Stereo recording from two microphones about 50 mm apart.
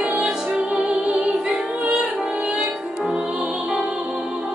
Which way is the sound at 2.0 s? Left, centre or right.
Centre.